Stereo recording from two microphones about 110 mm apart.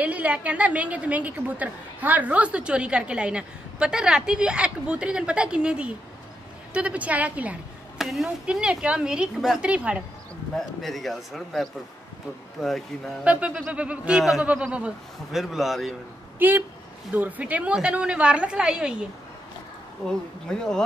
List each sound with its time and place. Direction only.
0.0 s a woman's voice: 15° right (ahead or behind)
8.0 s a woman's voice: centre (ahead or behind)
10.5 s speech: centre (ahead or behind)
13.2 s a woman's voice: 10° right (ahead or behind)
16.3 s a woman's voice: 15° right (ahead or behind)
20.1 s speech: 5° left (ahead or behind)